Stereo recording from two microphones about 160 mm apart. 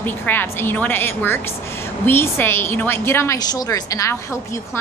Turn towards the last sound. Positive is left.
turn(degrees=20)  # may be behind; listen again after turning